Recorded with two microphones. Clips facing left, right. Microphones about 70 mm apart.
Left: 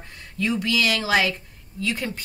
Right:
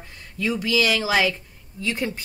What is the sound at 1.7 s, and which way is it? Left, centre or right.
Speech, centre.